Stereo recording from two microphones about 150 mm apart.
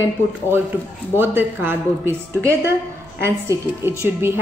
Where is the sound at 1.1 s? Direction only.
15° right (ahead or behind).